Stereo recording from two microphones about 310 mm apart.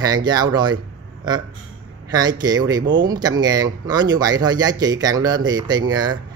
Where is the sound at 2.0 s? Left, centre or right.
Centre.